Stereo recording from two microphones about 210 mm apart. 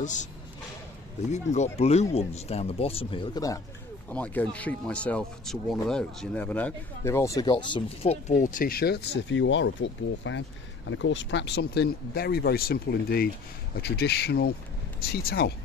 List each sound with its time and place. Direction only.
1.3 s speech: 35° left (ahead or behind); by 15.5 s 50° left (ahead or behind)